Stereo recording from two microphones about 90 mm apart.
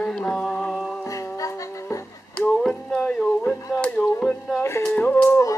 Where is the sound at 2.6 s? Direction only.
5° left (ahead or behind).